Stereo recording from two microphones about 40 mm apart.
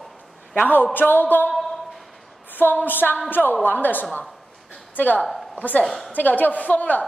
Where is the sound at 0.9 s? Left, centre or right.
Left.